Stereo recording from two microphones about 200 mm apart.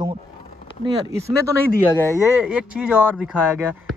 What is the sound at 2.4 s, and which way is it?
Speech, 5° right (ahead or behind).